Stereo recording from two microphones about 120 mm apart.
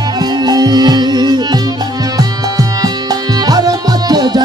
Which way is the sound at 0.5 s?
35° right (ahead or behind).